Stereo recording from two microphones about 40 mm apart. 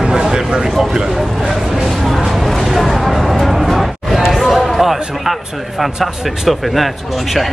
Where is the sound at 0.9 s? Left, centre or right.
Centre.